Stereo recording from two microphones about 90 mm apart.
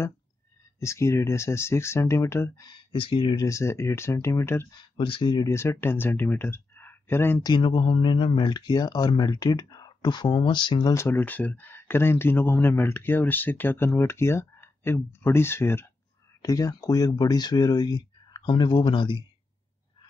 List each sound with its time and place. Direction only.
0.7 s speech: 35° left (ahead or behind)
2.6 s speech: 65° left (ahead or behind)
3.3 s speech: 35° left (ahead or behind)
4.7 s speech: 80° left
5.4 s speech: 30° left (ahead or behind)
7.4 s speech: 65° left (ahead or behind)
10.3 s speech: 65° left (ahead or behind)
10.9 s speech: 30° left (ahead or behind)
11.1 s speech: 20° left (ahead or behind)
16.4 s speech: 40° left (ahead or behind); by 19.1 s 65° left (ahead or behind)